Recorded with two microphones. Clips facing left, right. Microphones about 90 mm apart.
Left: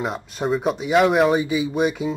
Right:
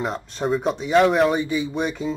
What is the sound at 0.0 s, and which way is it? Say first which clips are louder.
Speech: even; 5° left (ahead or behind).